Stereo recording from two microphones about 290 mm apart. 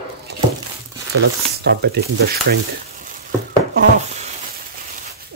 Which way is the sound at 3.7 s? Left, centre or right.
Right.